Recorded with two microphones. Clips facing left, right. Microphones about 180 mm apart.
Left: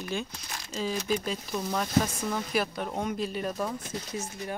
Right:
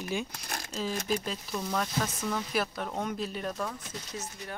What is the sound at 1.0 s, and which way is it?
Speech, centre (ahead or behind).